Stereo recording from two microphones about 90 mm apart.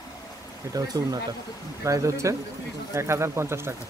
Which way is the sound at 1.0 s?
45° right (ahead or behind).